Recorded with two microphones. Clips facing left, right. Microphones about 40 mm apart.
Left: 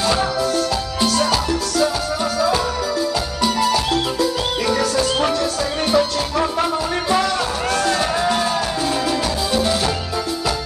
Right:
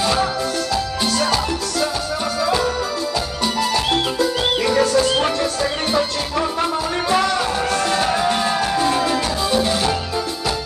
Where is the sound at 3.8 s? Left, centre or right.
Right.